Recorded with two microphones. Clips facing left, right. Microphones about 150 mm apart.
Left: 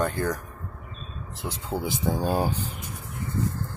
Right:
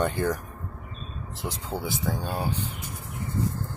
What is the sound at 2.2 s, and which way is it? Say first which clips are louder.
Speech: left 5 dB; 35° left (ahead or behind).